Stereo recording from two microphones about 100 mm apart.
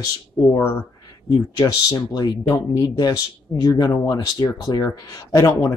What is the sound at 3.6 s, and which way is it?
Speech, 35° left (ahead or behind).